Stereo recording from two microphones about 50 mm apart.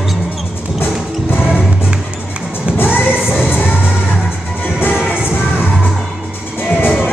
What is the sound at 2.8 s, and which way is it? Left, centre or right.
Music, left.